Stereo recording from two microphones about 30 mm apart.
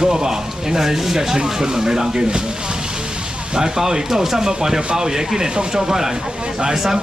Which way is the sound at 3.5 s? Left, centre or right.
Right.